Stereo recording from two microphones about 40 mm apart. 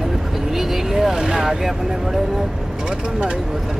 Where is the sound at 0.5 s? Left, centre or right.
Centre.